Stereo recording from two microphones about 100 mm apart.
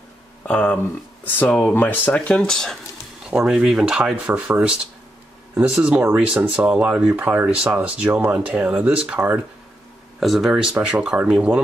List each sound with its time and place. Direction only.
0.5 s speech: 15° left (ahead or behind)
3.3 s speech: 5° right (ahead or behind)
10.2 s speech: centre (ahead or behind)